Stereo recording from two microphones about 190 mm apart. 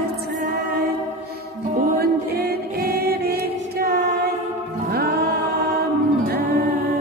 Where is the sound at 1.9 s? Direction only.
55° right (ahead or behind).